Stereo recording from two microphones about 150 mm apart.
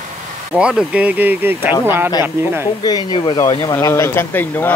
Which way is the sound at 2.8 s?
30° left (ahead or behind).